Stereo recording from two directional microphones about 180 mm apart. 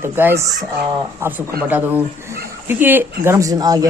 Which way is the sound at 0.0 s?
10° right (ahead or behind).